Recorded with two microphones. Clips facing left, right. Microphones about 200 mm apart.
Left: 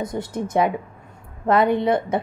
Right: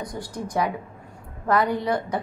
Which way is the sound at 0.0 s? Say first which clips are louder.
Left 6 dB; 25° left (ahead or behind).